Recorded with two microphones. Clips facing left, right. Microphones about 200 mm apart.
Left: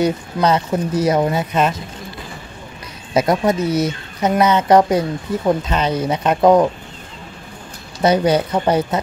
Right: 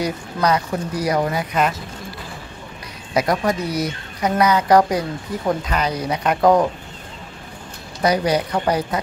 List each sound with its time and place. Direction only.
0.0 s a woman's voice: 25° left (ahead or behind)
3.2 s a woman's voice: 25° left (ahead or behind)
8.0 s a woman's voice: 25° left (ahead or behind)